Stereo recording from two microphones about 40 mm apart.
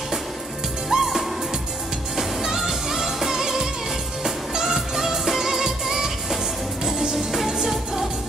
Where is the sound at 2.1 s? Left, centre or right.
Centre.